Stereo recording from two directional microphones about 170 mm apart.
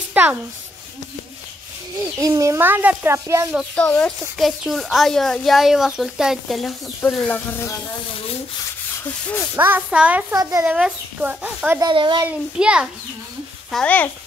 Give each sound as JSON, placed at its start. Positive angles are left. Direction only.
{"t": 0.1, "sound": "a sound", "side_deg": -10}
{"t": 2.1, "sound": "a child's voice", "side_deg": -20}
{"t": 3.5, "sound": "speech", "side_deg": 5}
{"t": 9.6, "sound": "a child's voice", "side_deg": -10}
{"t": 10.3, "sound": "a child's voice", "side_deg": -20}
{"t": 10.6, "sound": "a child's voice", "side_deg": -10}
{"t": 11.8, "sound": "a child's voice", "side_deg": -25}
{"t": 12.3, "sound": "speech", "side_deg": -5}
{"t": 13.7, "sound": "a child's voice", "side_deg": 5}